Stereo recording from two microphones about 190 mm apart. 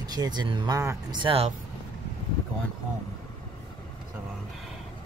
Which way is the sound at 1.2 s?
30° right (ahead or behind).